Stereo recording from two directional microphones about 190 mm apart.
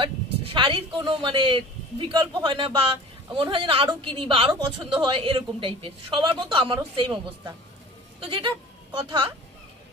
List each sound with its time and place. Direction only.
0.0 s a woman's voice: 25° right (ahead or behind)